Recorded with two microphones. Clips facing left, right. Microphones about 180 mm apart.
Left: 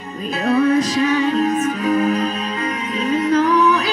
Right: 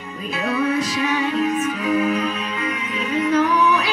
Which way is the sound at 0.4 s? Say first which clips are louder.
Left 6 dB; 40° left (ahead or behind).